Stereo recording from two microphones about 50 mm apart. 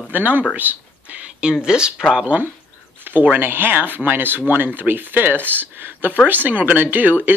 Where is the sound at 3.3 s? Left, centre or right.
Right.